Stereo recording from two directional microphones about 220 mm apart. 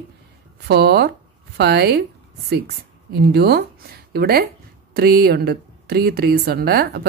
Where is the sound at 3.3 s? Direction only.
45° right (ahead or behind).